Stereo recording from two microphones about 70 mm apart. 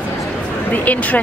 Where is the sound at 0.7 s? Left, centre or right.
Left.